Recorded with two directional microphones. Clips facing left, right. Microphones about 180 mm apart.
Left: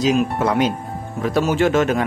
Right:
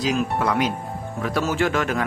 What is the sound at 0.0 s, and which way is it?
Speech, 20° left (ahead or behind).